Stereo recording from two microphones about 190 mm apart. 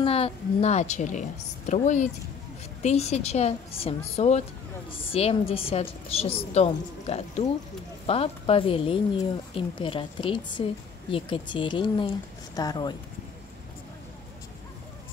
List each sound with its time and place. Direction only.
0.0 s a woman's voice: 30° left (ahead or behind)